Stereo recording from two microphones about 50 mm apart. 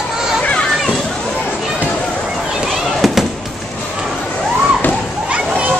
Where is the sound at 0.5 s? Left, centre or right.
Centre.